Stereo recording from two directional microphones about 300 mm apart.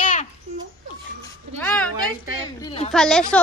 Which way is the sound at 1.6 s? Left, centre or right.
Centre.